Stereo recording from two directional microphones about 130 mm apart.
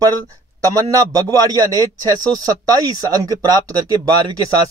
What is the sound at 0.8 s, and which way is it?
Speech, 30° right (ahead or behind).